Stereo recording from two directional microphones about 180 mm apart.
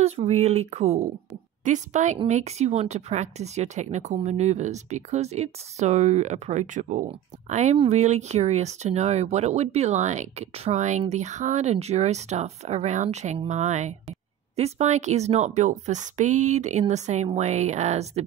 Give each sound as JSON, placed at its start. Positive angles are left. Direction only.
{"t": 0.0, "sound": "speech", "side_deg": -35}